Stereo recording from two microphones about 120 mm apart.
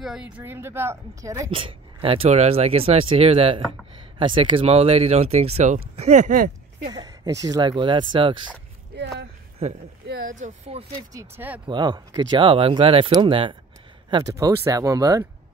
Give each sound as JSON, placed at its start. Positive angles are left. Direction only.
{"t": 0.0, "sound": "a woman's voice", "side_deg": -5}
{"t": 0.4, "sound": "speech", "side_deg": -20}
{"t": 1.5, "sound": "speech", "side_deg": -50}
{"t": 6.9, "sound": "speech", "side_deg": -30}
{"t": 9.6, "sound": "speech", "side_deg": -70}
{"t": 11.1, "sound": "speech", "side_deg": -15}
{"t": 11.6, "sound": "speech", "side_deg": -40}
{"t": 14.2, "sound": "speech", "side_deg": -25}